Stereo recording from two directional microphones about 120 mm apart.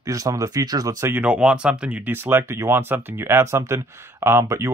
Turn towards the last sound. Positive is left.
turn(degrees=-20)  # may be behind; listen again after turning